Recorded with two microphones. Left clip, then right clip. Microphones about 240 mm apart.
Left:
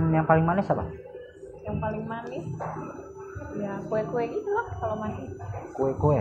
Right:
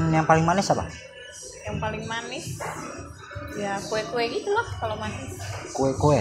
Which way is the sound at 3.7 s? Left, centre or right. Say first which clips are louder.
Right 1 dB; right.